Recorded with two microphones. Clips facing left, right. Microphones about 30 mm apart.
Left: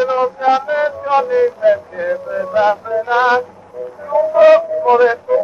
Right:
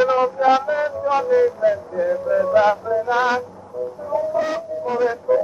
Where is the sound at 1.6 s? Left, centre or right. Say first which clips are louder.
Left 5 dB; left.